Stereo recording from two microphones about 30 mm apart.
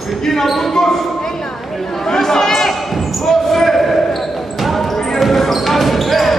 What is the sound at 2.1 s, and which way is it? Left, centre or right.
Chatter, centre.